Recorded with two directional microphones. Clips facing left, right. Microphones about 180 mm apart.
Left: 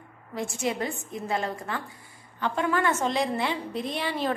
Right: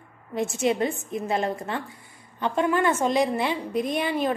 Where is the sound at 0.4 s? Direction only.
20° right (ahead or behind).